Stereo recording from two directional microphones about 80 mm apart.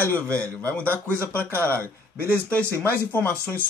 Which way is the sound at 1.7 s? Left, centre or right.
Right.